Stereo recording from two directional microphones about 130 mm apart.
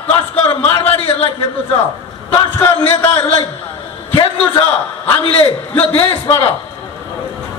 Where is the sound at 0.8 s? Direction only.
50° left (ahead or behind).